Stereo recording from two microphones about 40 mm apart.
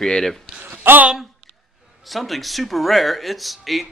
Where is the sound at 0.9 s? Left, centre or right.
Right.